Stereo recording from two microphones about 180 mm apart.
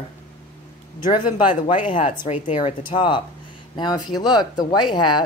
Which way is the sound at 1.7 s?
45° left (ahead or behind).